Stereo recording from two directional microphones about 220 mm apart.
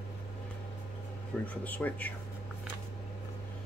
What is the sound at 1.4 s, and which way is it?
Speech, 5° left (ahead or behind).